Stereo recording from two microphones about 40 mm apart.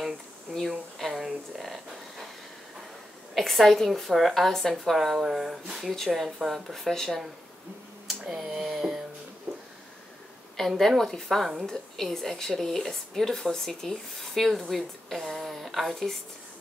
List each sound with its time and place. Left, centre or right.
0.6 s speech: centre
3.3 s speech: centre
5.1 s speech: centre
5.9 s a woman's voice: centre
8.1 s a sound: centre
9.5 s a sound: right
10.8 s a woman's voice: centre
11.6 s speech: centre